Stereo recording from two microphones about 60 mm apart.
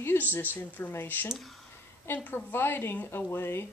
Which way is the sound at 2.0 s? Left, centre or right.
Left.